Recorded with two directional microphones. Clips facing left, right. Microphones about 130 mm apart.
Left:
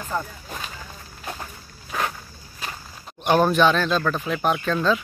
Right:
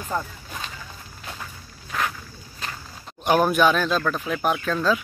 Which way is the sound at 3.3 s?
10° right (ahead or behind).